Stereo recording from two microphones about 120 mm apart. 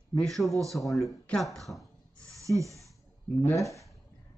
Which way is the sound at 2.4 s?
25° right (ahead or behind).